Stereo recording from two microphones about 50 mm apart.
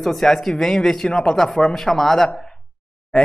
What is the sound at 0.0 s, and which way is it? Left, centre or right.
A man's voice, centre.